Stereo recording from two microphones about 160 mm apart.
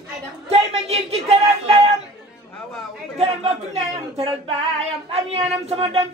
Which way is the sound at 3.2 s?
40° right (ahead or behind).